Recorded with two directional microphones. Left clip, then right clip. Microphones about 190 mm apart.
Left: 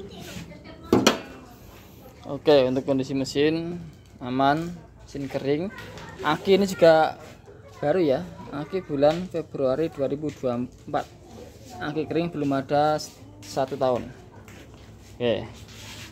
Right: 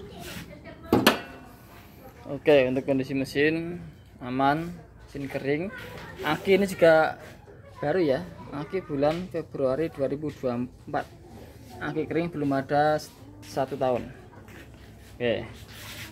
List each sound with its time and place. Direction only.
2.2 s speech: 10° left (ahead or behind)
15.1 s speech: 20° left (ahead or behind)